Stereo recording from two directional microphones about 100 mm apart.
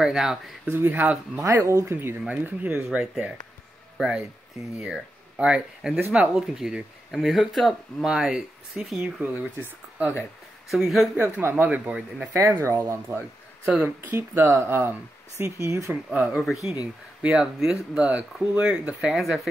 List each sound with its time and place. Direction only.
0.0 s speech: 5° right (ahead or behind)
0.7 s speech: 20° right (ahead or behind)
2.9 s speech: 10° right (ahead or behind)
9.6 s speech: 20° right (ahead or behind)
10.7 s speech: centre (ahead or behind)
11.1 s speech: 20° right (ahead or behind)
12.4 s speech: 25° right (ahead or behind)
16.1 s speech: 10° right (ahead or behind)